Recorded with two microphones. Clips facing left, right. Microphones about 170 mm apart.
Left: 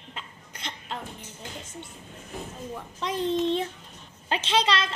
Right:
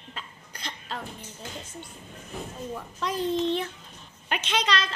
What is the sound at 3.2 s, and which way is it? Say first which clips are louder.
A woman's voice: left 1 dB; 25° left (ahead or behind).